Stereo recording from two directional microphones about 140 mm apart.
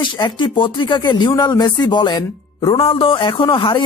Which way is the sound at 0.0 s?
35° left (ahead or behind).